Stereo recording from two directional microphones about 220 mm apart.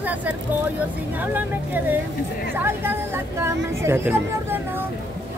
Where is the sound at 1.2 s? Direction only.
10° right (ahead or behind).